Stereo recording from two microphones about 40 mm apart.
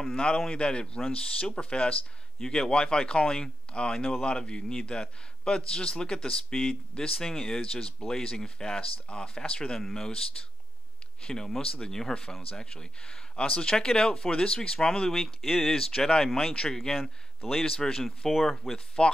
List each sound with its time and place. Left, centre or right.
0.0 s a man's voice: centre
2.4 s speech: centre
11.2 s speech: centre
15.7 s speech: centre
19.0 s speech: left